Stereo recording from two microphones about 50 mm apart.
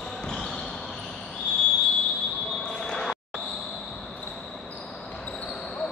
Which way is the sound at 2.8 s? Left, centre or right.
Centre.